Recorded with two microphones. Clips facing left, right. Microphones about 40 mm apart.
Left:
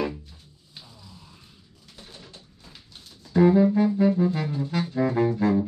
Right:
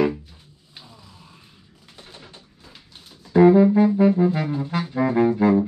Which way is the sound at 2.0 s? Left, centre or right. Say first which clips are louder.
Right 2 dB; right.